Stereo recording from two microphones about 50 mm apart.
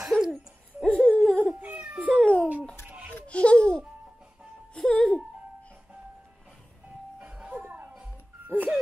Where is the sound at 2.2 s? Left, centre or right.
Left.